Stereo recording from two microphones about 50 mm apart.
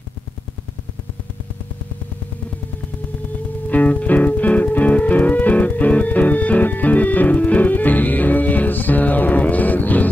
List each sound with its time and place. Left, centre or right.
3.6 s music: left